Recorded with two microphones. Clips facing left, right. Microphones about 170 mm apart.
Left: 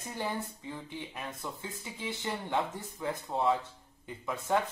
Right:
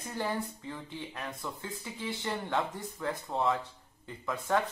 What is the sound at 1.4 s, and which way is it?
Speech, 20° left (ahead or behind).